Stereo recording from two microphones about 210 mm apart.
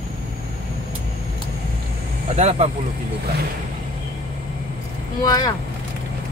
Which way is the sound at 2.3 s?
30° right (ahead or behind).